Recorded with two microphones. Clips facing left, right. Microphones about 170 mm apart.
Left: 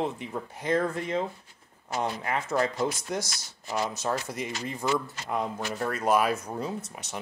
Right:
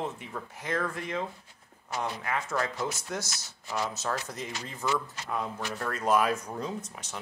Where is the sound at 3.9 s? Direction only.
15° left (ahead or behind).